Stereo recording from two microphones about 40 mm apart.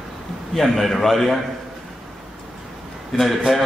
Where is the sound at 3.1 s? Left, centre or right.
Centre.